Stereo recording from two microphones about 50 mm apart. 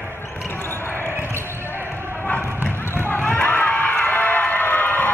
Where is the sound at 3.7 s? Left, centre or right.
Left.